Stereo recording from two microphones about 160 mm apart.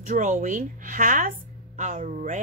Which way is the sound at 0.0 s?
50° right (ahead or behind).